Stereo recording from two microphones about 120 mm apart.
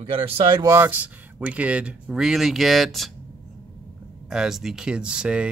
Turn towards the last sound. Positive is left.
turn(degrees=-10)  # may be behind; listen again after turning